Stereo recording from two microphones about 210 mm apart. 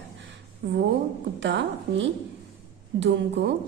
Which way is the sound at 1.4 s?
60° right (ahead or behind).